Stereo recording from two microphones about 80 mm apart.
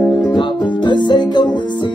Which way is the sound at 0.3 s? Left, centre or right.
Left.